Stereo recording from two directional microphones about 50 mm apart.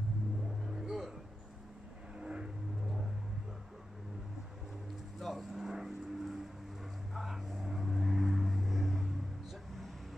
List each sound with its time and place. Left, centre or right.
0.7 s music: centre
2.1 s vehicle: centre
5.2 s vehicle: centre